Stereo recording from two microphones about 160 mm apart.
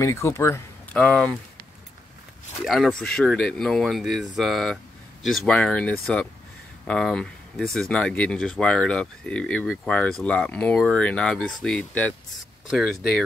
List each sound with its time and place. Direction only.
0.0 s speech: 20° left (ahead or behind)
1.0 s speech: 5° left (ahead or behind)
2.6 s speech: centre (ahead or behind)